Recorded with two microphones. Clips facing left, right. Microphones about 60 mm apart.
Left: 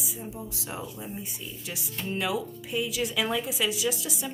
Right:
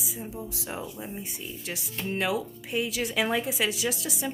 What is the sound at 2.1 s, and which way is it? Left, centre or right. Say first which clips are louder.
Speech: right 1 dB; right.